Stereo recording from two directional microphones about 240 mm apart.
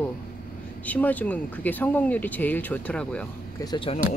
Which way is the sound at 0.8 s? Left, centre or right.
Centre.